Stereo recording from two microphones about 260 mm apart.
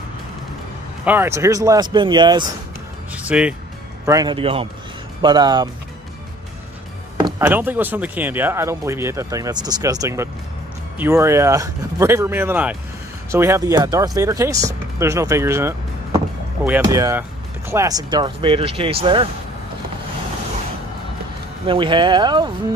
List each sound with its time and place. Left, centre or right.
1.0 s speech: centre
3.1 s music: centre
4.0 s speech: centre
7.2 s speech: centre
21.6 s speech: centre